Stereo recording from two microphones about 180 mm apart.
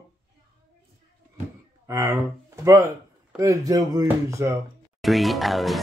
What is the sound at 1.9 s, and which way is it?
Speech, 15° right (ahead or behind).